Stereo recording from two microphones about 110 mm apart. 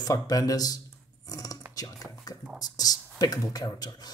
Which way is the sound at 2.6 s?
35° left (ahead or behind).